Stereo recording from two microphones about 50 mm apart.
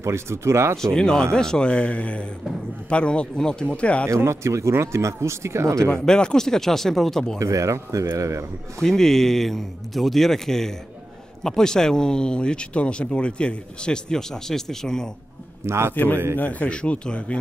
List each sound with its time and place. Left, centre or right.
0.0 s speech: right
0.7 s speech: centre
4.1 s speech: right
5.8 s speech: centre
7.3 s speech: right
8.7 s speech: centre
15.6 s speech: right
15.9 s a man's voice: left